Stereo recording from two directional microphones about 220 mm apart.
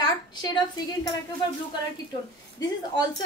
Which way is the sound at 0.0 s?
20° left (ahead or behind).